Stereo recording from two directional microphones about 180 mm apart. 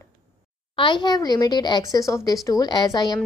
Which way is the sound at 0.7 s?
25° left (ahead or behind).